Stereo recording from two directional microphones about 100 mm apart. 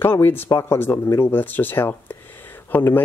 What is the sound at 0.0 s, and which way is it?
Speech, 20° left (ahead or behind).